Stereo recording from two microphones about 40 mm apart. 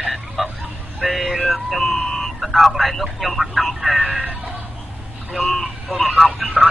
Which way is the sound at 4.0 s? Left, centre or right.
Right.